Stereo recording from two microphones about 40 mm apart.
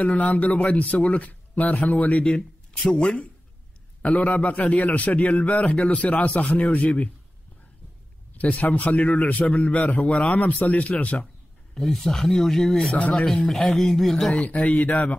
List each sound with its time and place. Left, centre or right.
0.0 s a man's voice: left
2.2 s speech: centre
4.0 s a man's voice: left
8.4 s a man's voice: left
11.7 s speech: centre
14.3 s a man's voice: left